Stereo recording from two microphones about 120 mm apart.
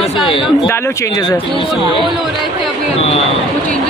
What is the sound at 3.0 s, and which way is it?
Speech, 55° left (ahead or behind).